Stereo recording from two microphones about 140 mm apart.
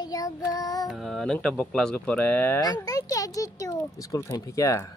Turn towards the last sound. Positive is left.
turn(degrees=20)  # may be behind; listen again after turning